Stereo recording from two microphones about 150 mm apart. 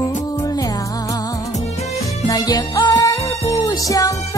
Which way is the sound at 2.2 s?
25° left (ahead or behind).